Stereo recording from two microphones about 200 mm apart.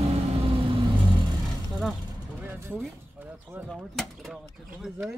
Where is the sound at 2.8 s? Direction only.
5° right (ahead or behind).